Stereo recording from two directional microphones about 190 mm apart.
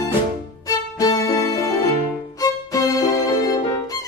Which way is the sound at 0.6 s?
20° left (ahead or behind).